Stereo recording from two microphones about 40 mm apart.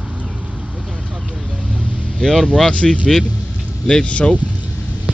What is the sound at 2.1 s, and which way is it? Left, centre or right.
Speech, centre.